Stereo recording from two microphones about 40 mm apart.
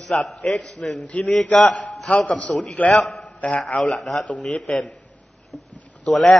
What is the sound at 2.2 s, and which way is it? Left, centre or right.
Speech, left.